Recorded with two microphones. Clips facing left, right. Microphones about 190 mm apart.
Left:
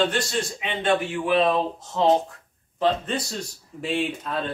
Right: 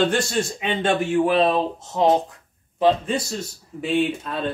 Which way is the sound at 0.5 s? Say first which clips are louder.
Even; 45° right (ahead or behind).